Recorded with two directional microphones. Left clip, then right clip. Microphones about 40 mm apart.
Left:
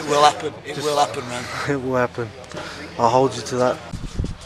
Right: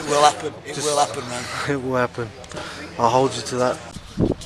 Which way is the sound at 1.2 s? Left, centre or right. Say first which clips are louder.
Even; centre.